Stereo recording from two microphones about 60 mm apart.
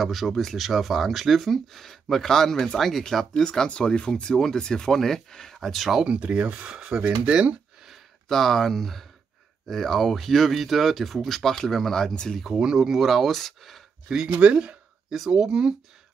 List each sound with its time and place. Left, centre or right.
0.0 s speech: centre
6.0 s speech: centre
8.3 s speech: centre
12.5 s speech: centre
14.0 s speech: centre